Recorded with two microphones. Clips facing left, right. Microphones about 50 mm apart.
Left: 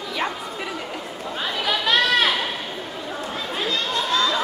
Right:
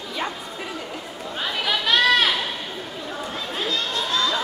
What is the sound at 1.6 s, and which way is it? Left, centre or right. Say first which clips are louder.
Chatter: left 1 dB; left.